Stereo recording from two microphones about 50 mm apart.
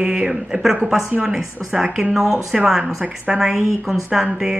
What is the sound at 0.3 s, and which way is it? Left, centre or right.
Speech, centre.